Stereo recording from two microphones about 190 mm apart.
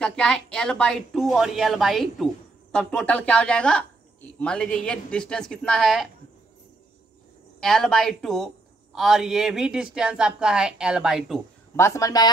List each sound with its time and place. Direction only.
0.0 s a woman's voice: 5° left (ahead or behind)
7.6 s a woman's voice: 5° left (ahead or behind)
11.7 s speech: 15° left (ahead or behind)